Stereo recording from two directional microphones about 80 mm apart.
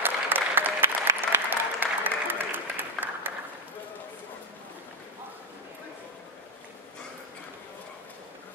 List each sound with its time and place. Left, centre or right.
0.0 s applause: right